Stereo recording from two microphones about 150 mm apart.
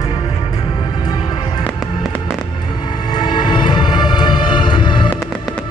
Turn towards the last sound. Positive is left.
turn(degrees=30)  # may be behind; listen again after turning